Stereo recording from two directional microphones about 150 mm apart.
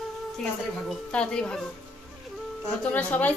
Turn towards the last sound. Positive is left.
turn(degrees=10)  # may be behind; listen again after turning